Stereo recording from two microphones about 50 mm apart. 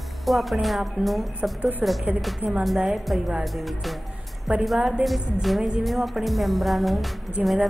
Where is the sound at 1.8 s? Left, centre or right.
Right.